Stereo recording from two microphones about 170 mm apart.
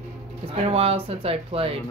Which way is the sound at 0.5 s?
35° right (ahead or behind).